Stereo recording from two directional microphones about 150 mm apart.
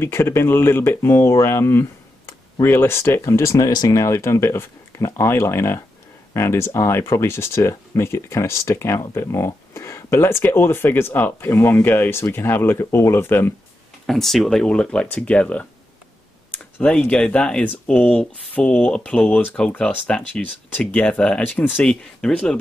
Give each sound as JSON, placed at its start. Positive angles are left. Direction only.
{"t": 0.0, "sound": "speech", "side_deg": 15}
{"t": 14.0, "sound": "speech", "side_deg": 0}
{"t": 16.7, "sound": "speech", "side_deg": 10}